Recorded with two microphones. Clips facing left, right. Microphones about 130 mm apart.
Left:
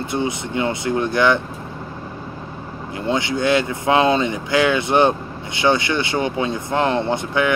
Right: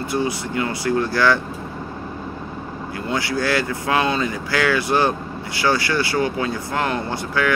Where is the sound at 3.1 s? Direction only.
20° left (ahead or behind).